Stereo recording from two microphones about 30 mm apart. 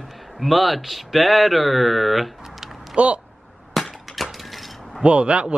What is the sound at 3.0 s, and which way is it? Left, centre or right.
Speech, right.